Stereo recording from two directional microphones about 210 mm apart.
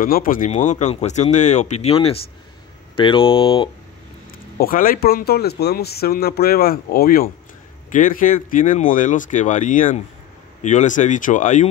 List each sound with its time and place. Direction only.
0.0 s speech: 40° left (ahead or behind); by 3.7 s 25° left (ahead or behind)
4.6 s speech: 40° left (ahead or behind)